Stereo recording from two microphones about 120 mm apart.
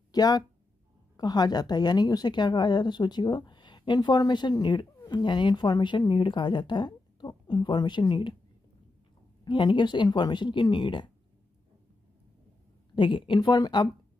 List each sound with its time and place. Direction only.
0.1 s a woman's voice: 35° left (ahead or behind)
9.4 s a woman's voice: 40° left (ahead or behind)
12.9 s a woman's voice: 45° left (ahead or behind)